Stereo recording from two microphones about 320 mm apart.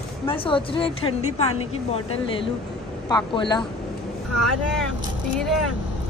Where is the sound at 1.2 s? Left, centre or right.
Left.